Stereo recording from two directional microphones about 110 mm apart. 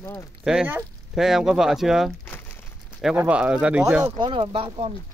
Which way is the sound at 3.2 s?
10° right (ahead or behind).